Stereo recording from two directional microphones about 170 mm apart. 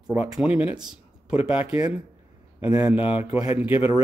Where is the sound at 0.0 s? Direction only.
10° right (ahead or behind).